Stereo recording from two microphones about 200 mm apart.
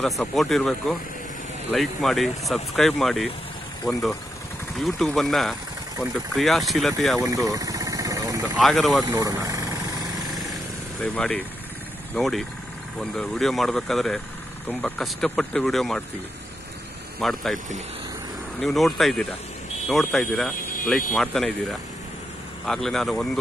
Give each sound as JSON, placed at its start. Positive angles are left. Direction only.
{"t": 0.0, "sound": "speech", "side_deg": 0}
{"t": 7.2, "sound": "a sound", "side_deg": -15}
{"t": 8.5, "sound": "speech", "side_deg": 0}
{"t": 9.0, "sound": "speech", "side_deg": -15}
{"t": 11.0, "sound": "speech", "side_deg": 5}
{"t": 17.2, "sound": "speech", "side_deg": 0}
{"t": 18.6, "sound": "speech", "side_deg": 0}